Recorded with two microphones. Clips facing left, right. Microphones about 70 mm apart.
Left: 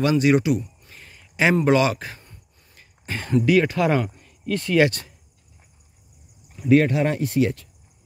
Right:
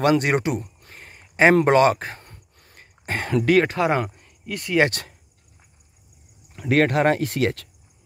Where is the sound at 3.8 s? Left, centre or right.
Right.